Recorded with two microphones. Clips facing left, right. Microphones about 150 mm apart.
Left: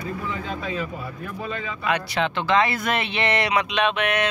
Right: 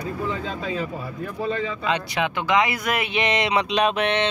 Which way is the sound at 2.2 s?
15° right (ahead or behind).